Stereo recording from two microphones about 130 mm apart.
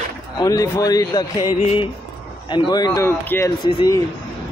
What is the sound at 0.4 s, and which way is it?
Speech, 25° left (ahead or behind).